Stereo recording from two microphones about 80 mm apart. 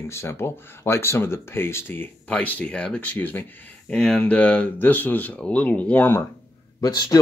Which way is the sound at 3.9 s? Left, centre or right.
Centre.